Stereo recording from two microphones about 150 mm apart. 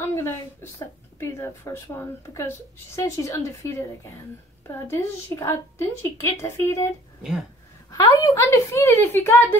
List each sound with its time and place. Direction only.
0.0 s speech: 15° left (ahead or behind)
3.0 s a woman's voice: 20° left (ahead or behind)
8.0 s a woman's voice: 20° left (ahead or behind)